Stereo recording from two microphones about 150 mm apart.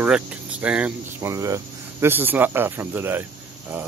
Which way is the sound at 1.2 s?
20° right (ahead or behind).